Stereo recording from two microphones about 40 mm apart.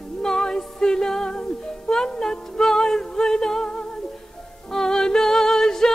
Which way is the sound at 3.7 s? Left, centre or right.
Left.